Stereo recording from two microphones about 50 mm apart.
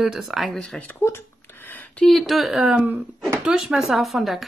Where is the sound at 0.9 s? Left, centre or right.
Left.